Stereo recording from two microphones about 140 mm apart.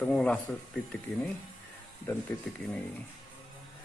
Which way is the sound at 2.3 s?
15° left (ahead or behind).